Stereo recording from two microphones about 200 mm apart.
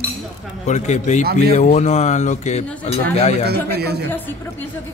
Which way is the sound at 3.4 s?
55° right (ahead or behind).